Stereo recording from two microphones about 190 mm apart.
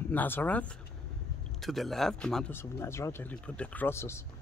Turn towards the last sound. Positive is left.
turn(degrees=15)  # may be behind; listen again after turning